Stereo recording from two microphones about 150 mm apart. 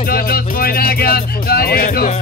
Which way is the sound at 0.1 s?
85° left.